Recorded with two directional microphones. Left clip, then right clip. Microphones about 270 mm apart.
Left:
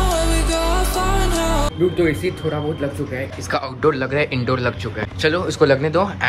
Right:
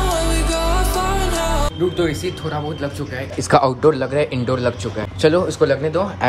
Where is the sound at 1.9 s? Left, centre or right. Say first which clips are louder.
Left 2 dB; centre.